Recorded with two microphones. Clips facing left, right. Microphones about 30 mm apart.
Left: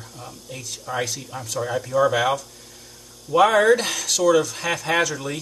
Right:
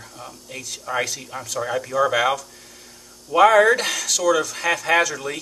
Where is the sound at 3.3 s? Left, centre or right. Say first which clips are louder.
Right 3 dB; right.